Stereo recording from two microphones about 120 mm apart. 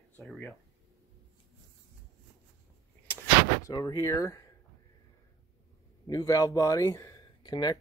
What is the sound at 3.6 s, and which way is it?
Speech, 30° left (ahead or behind).